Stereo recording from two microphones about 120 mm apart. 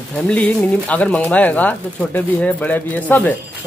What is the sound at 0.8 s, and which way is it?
Speech, 10° left (ahead or behind).